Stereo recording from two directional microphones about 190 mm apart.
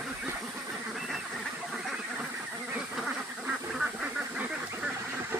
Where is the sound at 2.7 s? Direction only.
5° right (ahead or behind).